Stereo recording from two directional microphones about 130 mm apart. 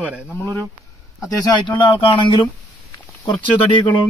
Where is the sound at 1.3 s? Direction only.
30° left (ahead or behind).